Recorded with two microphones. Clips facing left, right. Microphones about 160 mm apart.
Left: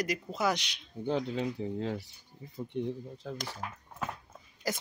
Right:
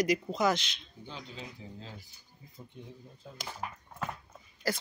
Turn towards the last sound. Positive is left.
turn(degrees=20)  # may be behind; listen again after turning